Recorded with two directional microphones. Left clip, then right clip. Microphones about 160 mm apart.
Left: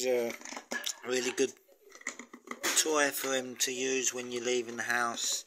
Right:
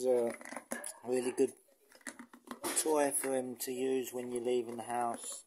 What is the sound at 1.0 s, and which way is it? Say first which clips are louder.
Speech: even; 20° right (ahead or behind).